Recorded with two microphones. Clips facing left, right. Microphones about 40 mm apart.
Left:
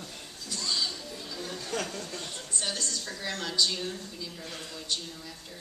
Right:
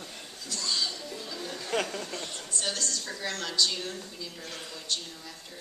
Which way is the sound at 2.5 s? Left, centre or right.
Centre.